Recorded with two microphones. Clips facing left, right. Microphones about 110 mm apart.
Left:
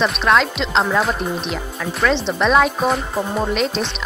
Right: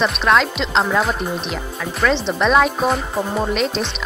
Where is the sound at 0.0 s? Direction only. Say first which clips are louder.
Even; centre (ahead or behind).